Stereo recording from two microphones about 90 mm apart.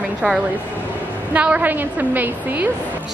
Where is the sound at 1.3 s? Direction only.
15° right (ahead or behind).